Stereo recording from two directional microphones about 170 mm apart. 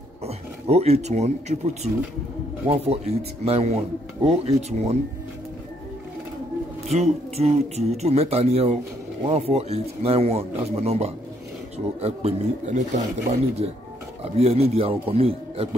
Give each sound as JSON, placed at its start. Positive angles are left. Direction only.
{"t": 0.2, "sound": "speech", "side_deg": -40}
{"t": 6.9, "sound": "speech", "side_deg": -40}